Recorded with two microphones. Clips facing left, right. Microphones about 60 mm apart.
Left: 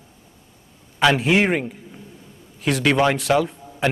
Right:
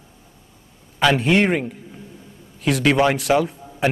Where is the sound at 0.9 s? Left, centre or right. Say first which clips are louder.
Even; centre.